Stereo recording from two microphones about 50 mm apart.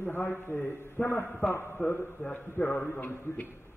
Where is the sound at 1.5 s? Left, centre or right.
Left.